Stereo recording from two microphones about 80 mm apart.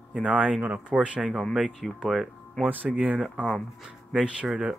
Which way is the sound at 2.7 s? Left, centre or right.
Right.